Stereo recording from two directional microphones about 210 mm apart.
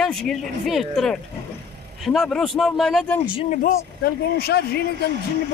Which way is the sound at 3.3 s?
35° left (ahead or behind).